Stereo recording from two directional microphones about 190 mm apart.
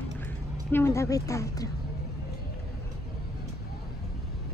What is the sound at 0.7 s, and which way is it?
Speech, 15° left (ahead or behind).